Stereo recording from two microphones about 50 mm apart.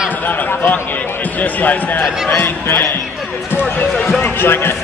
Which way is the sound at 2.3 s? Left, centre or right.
Left.